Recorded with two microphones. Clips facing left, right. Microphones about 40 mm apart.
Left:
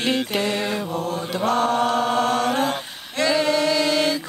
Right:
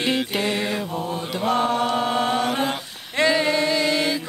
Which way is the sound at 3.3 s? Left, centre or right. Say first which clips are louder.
Left 2 dB; right.